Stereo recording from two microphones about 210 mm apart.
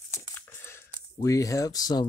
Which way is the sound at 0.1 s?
15° left (ahead or behind).